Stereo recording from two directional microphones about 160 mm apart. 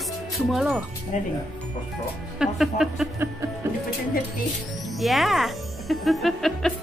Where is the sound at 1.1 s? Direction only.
50° left (ahead or behind).